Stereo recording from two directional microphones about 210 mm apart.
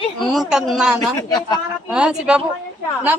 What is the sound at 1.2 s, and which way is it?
Speech, 20° left (ahead or behind).